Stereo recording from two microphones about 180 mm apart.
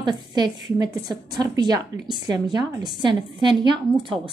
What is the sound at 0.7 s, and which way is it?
Speech, 20° right (ahead or behind).